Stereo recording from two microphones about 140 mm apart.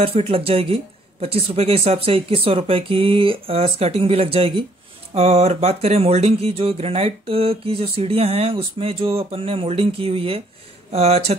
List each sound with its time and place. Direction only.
0.0 s speech: 45° right (ahead or behind)